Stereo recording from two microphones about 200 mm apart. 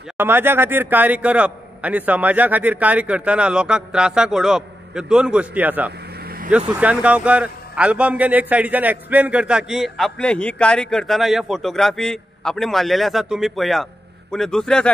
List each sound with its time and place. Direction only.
0.2 s a man's voice: 10° right (ahead or behind)
6.1 s vehicle: 45° right (ahead or behind)
6.7 s a man's voice: 5° right (ahead or behind)